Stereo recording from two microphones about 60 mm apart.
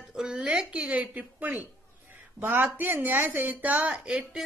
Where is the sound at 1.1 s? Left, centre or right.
Right.